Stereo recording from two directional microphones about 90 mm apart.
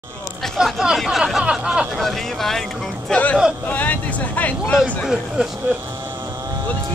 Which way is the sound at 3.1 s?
15° left (ahead or behind).